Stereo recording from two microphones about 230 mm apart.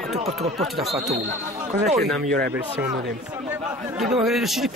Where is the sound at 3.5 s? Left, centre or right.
Centre.